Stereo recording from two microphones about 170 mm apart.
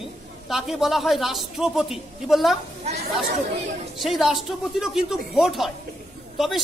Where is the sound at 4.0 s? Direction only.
Centre (ahead or behind).